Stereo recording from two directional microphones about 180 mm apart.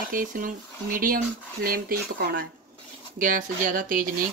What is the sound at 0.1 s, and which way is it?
Speech, 50° right (ahead or behind).